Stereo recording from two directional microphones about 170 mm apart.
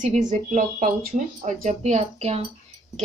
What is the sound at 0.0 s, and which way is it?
Speech, 45° right (ahead or behind).